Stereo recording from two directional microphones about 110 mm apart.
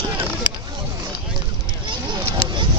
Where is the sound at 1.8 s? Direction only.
45° right (ahead or behind).